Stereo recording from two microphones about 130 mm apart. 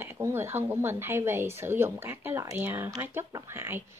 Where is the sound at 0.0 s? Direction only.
20° right (ahead or behind).